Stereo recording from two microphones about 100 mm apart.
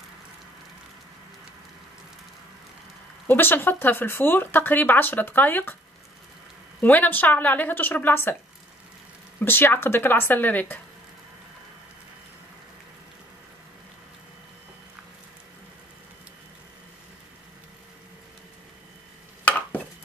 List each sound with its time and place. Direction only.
3.3 s speech: 20° left (ahead or behind)
6.8 s speech: 20° left (ahead or behind)
9.4 s speech: 20° left (ahead or behind)